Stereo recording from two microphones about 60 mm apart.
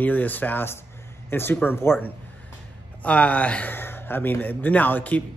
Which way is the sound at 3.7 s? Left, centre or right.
Left.